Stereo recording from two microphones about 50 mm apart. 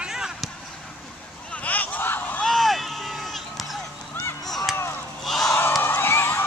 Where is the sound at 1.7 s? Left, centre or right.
Left.